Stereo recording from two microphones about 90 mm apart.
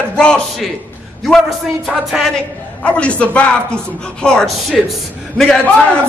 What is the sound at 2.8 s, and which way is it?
A man's voice, 10° left (ahead or behind).